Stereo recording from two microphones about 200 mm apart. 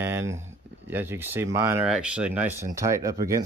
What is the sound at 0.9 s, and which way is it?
Speech, 10° right (ahead or behind).